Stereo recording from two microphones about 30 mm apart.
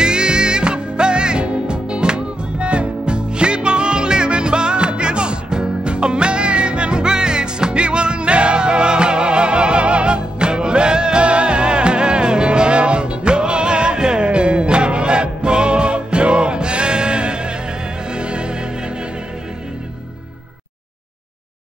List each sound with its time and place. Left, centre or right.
0.0 s music: right